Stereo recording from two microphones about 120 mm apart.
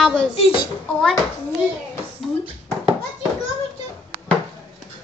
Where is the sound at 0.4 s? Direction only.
50° left (ahead or behind).